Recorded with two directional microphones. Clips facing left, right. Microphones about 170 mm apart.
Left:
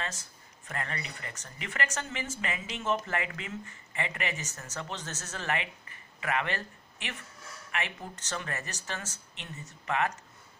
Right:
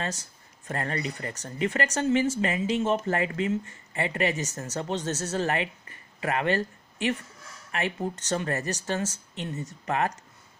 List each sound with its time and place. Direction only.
0.0 s speech: 35° right (ahead or behind)